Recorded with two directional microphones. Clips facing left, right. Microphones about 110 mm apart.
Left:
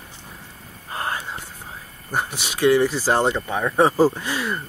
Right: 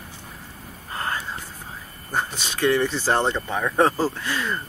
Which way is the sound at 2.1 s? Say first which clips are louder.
Left 1 dB; 10° left (ahead or behind).